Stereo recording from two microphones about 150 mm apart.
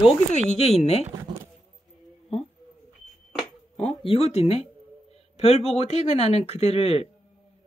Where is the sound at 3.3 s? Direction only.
5° left (ahead or behind).